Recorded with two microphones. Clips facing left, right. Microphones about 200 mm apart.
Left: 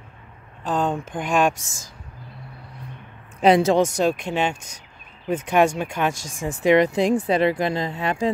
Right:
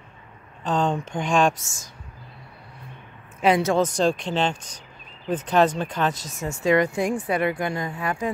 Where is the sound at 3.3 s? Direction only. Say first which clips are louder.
Left 4 dB; 35° left (ahead or behind).